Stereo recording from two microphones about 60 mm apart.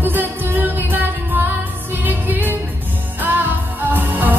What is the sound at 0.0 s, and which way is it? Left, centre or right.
Music, right.